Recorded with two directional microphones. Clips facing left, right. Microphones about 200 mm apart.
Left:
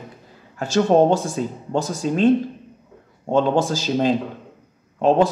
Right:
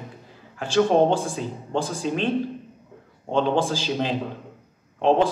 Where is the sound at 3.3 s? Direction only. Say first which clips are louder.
Left 3 dB; 45° left (ahead or behind).